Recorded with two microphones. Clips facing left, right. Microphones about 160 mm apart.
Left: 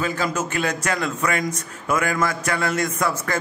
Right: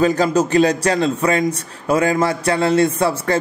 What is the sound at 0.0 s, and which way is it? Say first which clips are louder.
A man's voice: right 9 dB; 40° right (ahead or behind).